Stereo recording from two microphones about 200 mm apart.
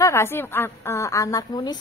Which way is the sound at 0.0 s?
15° left (ahead or behind).